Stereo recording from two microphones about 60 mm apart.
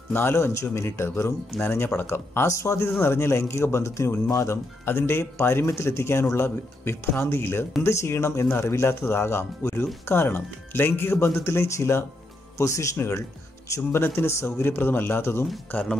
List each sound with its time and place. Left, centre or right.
0.1 s a man's voice: left
1.6 s a man's voice: left
3.0 s a man's voice: left
4.8 s a man's voice: left
7.8 s a man's voice: left
12.9 s a man's voice: left